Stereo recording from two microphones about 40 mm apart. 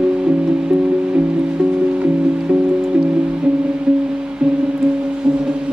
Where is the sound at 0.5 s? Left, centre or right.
Right.